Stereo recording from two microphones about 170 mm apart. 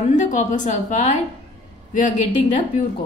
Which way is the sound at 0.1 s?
45° left (ahead or behind).